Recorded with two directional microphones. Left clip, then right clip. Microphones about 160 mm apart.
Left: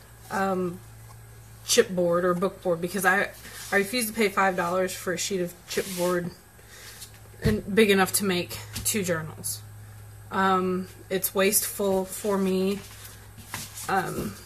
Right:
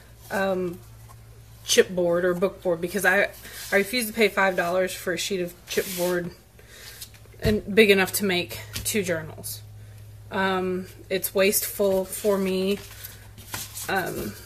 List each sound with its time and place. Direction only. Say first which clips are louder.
0.3 s speech: right 2 dB; 5° left (ahead or behind)
7.4 s speech: right 3 dB; 5° left (ahead or behind)
10.3 s speech: left 1 dB; 5° left (ahead or behind)
13.8 s speech: even; centre (ahead or behind)